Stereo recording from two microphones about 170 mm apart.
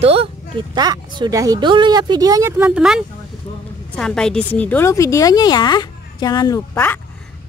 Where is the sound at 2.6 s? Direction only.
5° right (ahead or behind); by 7.0 s 15° left (ahead or behind).